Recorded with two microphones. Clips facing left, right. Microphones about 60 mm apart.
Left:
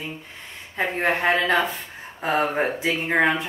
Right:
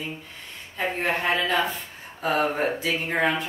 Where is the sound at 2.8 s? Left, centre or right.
Left.